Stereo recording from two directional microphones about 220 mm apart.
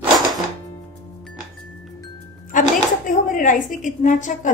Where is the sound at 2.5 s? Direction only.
35° left (ahead or behind).